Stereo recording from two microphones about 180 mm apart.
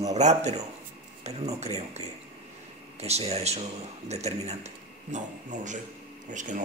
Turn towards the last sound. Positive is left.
turn(degrees=-45)  # may be behind; listen again after turning